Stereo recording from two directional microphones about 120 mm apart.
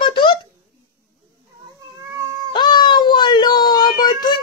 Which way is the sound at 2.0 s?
25° right (ahead or behind).